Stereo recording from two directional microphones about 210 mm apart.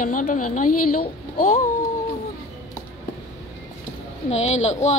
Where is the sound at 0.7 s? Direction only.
90° left.